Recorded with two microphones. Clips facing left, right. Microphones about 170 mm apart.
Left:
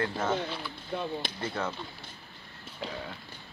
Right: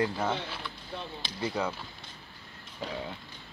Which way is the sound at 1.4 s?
15° right (ahead or behind).